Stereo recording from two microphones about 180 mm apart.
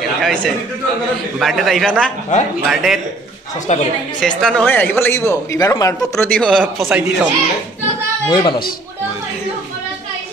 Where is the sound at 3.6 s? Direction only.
40° left (ahead or behind).